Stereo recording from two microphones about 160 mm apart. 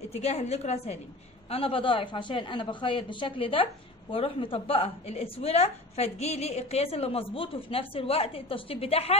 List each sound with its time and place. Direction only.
0.1 s a woman's voice: 40° left (ahead or behind)